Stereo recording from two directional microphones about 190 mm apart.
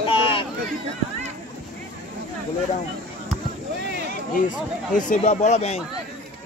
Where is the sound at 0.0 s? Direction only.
25° left (ahead or behind).